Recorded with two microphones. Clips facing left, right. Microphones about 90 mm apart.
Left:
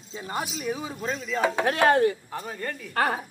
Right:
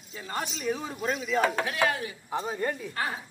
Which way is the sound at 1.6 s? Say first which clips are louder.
Left 8 dB; 55° left (ahead or behind).